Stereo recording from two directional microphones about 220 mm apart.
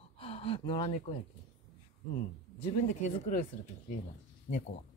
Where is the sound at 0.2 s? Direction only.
25° left (ahead or behind).